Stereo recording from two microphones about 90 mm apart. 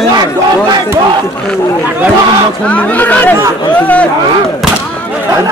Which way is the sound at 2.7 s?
20° left (ahead or behind).